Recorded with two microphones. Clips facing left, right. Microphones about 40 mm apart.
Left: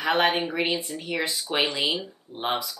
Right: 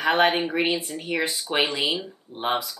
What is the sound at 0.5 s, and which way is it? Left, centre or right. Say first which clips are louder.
Speech: right 2 dB; centre.